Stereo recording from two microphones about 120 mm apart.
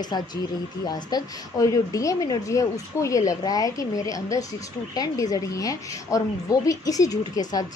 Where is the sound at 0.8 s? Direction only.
35° left (ahead or behind).